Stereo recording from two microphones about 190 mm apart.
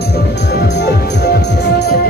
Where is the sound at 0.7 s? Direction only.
60° left (ahead or behind).